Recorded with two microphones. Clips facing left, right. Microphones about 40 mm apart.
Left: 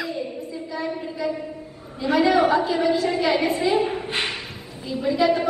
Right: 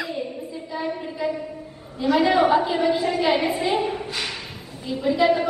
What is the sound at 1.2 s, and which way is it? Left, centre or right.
Speech, right.